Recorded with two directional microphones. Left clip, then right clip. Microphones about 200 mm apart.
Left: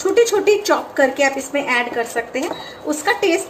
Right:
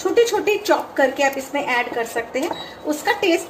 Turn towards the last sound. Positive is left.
turn(degrees=5)  # may be behind; listen again after turning